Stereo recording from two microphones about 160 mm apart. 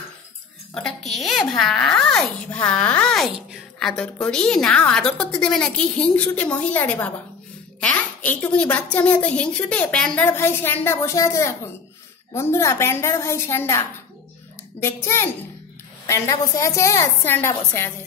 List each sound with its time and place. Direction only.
0.7 s a child's voice: centre (ahead or behind)